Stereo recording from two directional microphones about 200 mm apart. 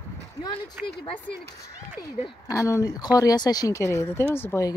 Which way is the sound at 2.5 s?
15° left (ahead or behind).